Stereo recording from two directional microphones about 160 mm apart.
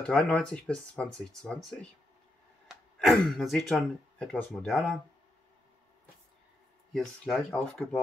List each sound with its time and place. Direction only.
0.0 s speech: 5° left (ahead or behind)
6.9 s speech: centre (ahead or behind)